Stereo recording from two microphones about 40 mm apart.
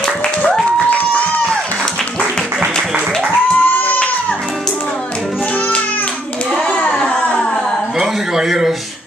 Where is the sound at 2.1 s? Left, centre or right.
Centre.